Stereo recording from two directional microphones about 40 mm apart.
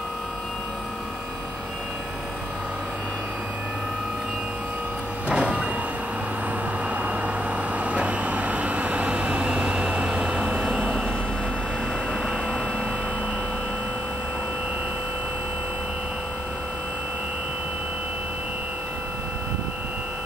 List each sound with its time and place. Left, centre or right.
5.3 s vehicle: right
7.8 s vehicle: right
12.1 s a sound: centre